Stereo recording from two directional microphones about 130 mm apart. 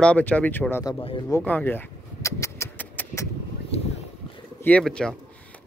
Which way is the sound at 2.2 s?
20° left (ahead or behind).